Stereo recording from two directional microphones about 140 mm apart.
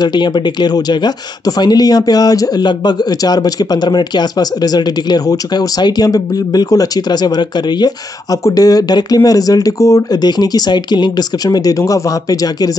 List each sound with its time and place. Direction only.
0.0 s speech: 30° left (ahead or behind)